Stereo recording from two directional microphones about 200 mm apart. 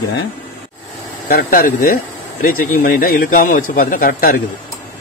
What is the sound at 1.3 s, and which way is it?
A man's voice, 45° left (ahead or behind).